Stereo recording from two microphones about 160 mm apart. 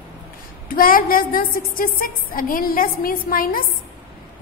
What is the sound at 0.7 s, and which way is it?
A woman's voice, 60° left (ahead or behind).